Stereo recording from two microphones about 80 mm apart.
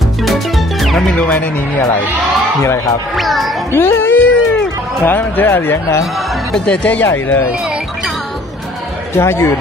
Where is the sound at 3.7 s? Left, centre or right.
Left.